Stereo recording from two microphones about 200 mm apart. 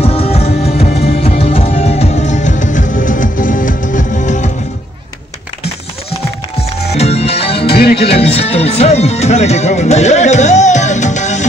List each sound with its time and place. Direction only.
0.0 s music: 30° left (ahead or behind)
7.0 s music: 30° left (ahead or behind)
7.7 s music: 55° left (ahead or behind)
8.1 s music: 30° left (ahead or behind)